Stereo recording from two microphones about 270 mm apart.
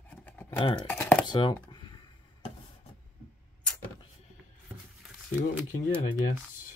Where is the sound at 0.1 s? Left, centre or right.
Centre.